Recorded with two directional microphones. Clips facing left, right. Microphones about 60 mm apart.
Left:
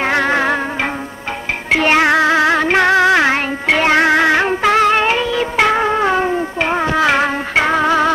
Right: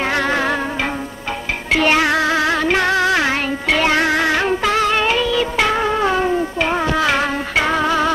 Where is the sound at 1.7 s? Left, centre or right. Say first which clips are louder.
Left 3 dB; left.